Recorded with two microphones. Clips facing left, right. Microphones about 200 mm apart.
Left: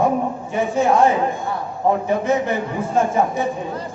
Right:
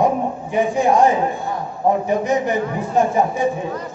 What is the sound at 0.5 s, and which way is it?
Speech, 15° right (ahead or behind).